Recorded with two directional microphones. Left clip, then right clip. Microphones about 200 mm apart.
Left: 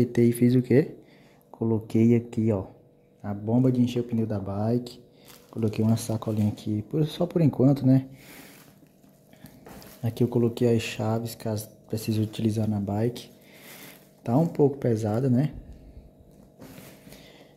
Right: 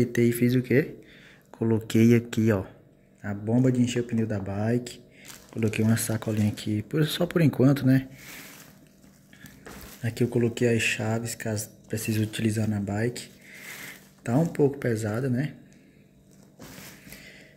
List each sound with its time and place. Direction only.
0.0 s speech: 10° left (ahead or behind)
10.0 s speech: 10° left (ahead or behind)